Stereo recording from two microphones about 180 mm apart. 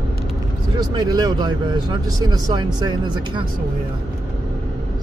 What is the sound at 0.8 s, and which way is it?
Speech, 20° right (ahead or behind).